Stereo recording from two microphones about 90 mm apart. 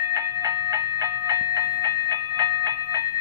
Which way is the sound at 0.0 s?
40° right (ahead or behind).